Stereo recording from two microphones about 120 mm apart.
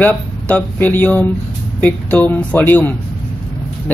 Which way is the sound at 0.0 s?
10° left (ahead or behind).